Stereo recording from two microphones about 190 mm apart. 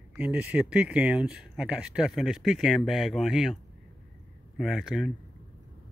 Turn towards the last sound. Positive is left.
turn(degrees=0)  # may be behind; listen again after turning